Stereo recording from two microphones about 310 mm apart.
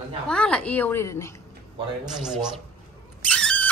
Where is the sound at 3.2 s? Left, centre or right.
Centre.